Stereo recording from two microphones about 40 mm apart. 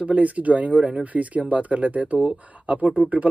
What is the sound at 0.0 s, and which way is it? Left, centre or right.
Speech, right.